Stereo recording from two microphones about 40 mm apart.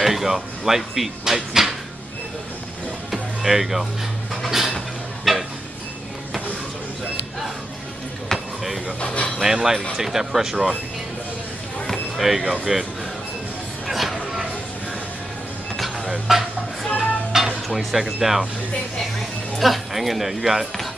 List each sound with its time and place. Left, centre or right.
0.0 s speech: centre
3.1 s music: centre
4.5 s a sound: centre
5.3 s tick-tock: centre
8.3 s basketball bounce: centre
9.0 s a sound: left
9.4 s speech: centre
12.2 s speech: centre
13.8 s a sound: centre
16.1 s speech: centre
17.3 s music: centre
17.6 s speech: centre